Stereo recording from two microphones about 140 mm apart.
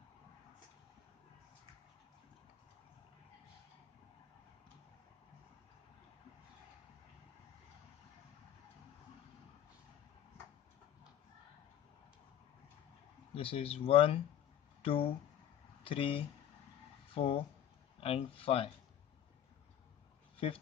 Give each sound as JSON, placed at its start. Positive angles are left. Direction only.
{"t": 13.3, "sound": "speech", "side_deg": 40}